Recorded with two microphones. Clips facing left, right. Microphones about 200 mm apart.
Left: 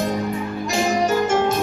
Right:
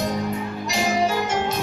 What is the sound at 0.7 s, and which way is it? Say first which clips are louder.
Music: left 2 dB; 50° left (ahead or behind).